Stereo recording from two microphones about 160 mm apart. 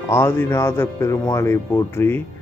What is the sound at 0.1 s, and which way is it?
A man's voice, 15° left (ahead or behind).